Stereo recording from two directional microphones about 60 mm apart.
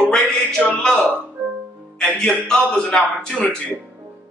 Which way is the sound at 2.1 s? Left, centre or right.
Centre.